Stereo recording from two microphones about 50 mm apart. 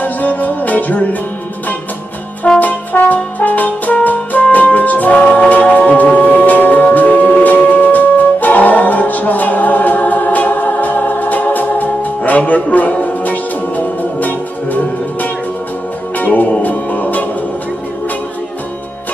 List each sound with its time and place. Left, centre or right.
0.0 s music: left
2.6 s brass instrument: left
3.3 s music: left
16.2 s music: left